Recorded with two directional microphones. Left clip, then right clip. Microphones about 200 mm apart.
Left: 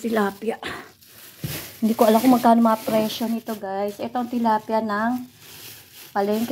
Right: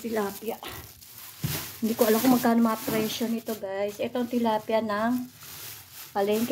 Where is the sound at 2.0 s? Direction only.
15° left (ahead or behind).